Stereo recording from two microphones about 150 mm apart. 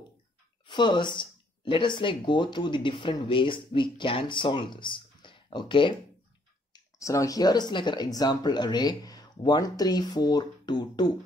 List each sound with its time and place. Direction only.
0.7 s speech: 30° left (ahead or behind)
6.7 s speech: 20° left (ahead or behind)